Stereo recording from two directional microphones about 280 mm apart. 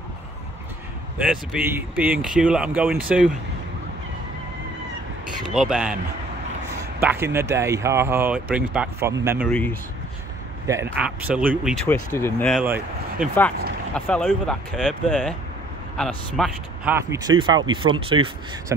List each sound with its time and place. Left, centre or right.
1.1 s speech: centre
5.4 s a man's voice: centre
7.0 s speech: centre
9.5 s speech: centre
10.7 s speech: centre
11.9 s speech: centre